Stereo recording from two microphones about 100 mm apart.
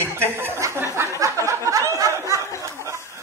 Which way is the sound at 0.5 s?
30° right (ahead or behind).